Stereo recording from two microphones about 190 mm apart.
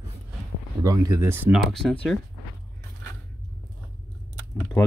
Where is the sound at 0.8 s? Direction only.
20° right (ahead or behind); by 2.2 s 5° left (ahead or behind).